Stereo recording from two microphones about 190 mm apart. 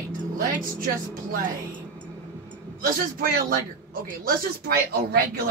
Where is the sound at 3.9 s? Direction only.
50° right (ahead or behind).